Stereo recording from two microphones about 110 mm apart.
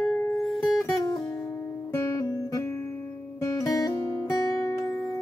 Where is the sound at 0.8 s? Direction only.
30° left (ahead or behind).